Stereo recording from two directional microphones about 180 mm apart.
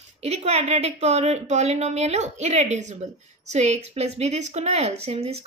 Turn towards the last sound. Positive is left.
turn(degrees=-35)  # may be behind; listen again after turning